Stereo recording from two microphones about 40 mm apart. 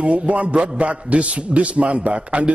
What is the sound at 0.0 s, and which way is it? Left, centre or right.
A man's voice, right.